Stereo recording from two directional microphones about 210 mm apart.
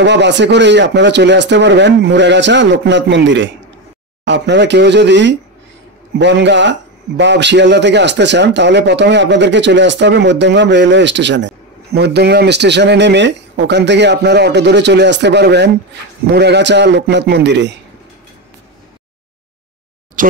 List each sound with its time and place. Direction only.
0.0 s a man's voice: 55° right (ahead or behind)
20.2 s speech: 40° right (ahead or behind)